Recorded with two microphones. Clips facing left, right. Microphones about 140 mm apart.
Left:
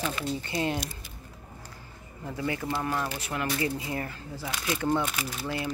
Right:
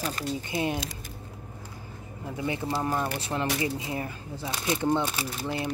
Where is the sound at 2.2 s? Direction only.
20° right (ahead or behind).